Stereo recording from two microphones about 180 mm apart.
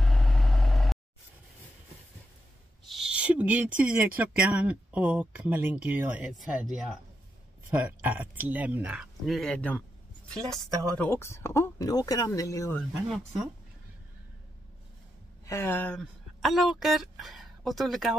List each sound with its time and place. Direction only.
0.0 s vehicle: centre (ahead or behind)
2.9 s speech: 5° right (ahead or behind)
7.7 s speech: 10° right (ahead or behind); by 9.8 s 5° left (ahead or behind)
11.0 s speech: 15° left (ahead or behind)
12.7 s speech: centre (ahead or behind)
15.4 s speech: 15° left (ahead or behind)